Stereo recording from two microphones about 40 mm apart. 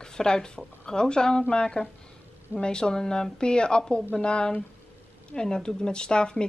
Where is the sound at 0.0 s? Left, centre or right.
Centre.